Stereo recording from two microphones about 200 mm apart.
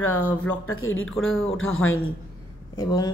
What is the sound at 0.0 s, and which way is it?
Speech, 90° left.